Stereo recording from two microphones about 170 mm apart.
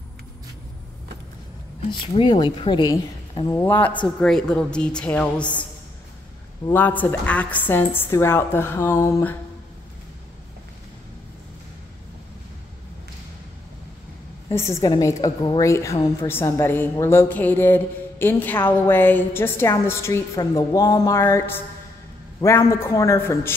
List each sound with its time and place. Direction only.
1.9 s a woman's voice: 30° left (ahead or behind); by 5.7 s 10° left (ahead or behind)
6.7 s a woman's voice: 10° left (ahead or behind)
14.5 s a woman's voice: 15° left (ahead or behind)